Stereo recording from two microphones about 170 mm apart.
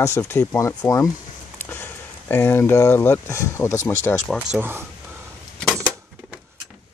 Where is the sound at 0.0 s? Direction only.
20° left (ahead or behind).